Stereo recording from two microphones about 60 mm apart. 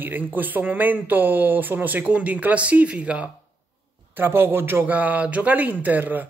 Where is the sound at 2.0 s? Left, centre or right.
Right.